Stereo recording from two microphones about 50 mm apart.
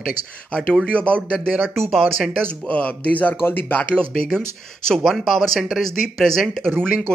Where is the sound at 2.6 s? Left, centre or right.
Left.